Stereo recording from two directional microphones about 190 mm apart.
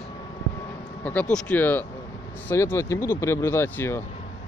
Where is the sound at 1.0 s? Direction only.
5° left (ahead or behind).